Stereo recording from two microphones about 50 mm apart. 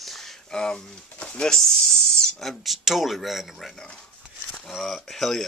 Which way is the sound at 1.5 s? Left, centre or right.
Centre.